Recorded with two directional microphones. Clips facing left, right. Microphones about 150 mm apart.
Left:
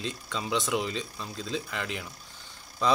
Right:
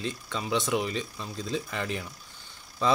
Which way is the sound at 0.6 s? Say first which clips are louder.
Right 1 dB; 20° right (ahead or behind).